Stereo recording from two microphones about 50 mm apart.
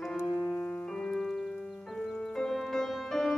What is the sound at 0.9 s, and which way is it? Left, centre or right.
Music, centre.